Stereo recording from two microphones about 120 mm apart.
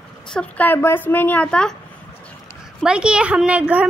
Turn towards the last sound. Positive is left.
turn(degrees=-10)  # may be behind; listen again after turning